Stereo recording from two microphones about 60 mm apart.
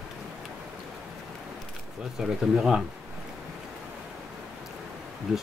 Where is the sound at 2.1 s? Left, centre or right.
Centre.